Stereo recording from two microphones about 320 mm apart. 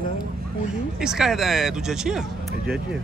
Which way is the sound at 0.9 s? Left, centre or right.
Centre.